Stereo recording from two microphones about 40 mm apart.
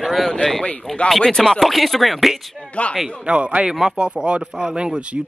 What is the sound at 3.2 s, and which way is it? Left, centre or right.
Speech, right.